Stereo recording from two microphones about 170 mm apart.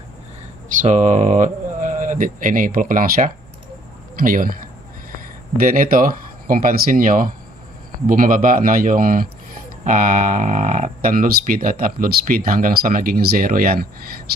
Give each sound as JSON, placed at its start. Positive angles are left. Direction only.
{"t": 0.7, "sound": "speech", "side_deg": -45}
{"t": 5.6, "sound": "speech", "side_deg": -55}